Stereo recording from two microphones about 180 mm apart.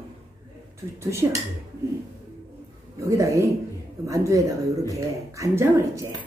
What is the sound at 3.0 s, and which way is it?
Speech, 15° right (ahead or behind).